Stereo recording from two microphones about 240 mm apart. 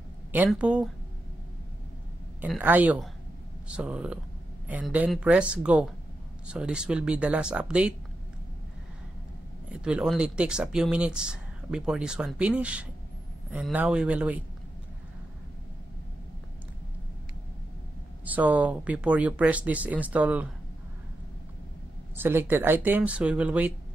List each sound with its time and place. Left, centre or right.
0.3 s speech: centre
2.4 s speech: centre
9.7 s speech: centre
18.2 s speech: centre
22.1 s speech: centre